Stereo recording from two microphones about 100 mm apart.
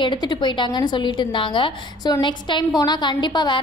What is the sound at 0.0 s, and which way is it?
A woman's voice, 50° left (ahead or behind).